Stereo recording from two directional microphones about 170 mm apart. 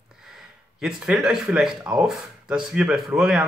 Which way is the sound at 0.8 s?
Centre (ahead or behind).